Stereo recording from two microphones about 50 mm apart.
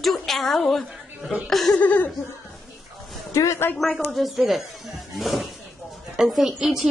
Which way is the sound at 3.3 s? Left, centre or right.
Left.